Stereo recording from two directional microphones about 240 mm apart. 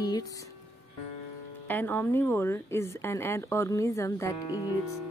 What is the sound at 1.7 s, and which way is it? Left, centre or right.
Speech, centre.